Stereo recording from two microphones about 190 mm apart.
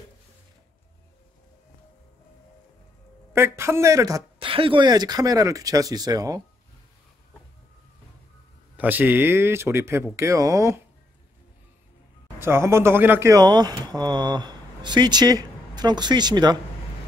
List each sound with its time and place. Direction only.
3.3 s speech: 15° right (ahead or behind)
8.7 s speech: 10° right (ahead or behind)
12.4 s speech: 15° right (ahead or behind)